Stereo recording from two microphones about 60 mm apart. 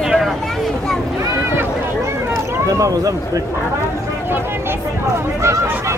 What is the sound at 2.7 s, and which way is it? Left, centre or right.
Speech, right.